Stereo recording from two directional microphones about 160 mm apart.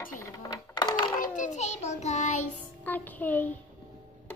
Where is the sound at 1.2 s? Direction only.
50° left (ahead or behind).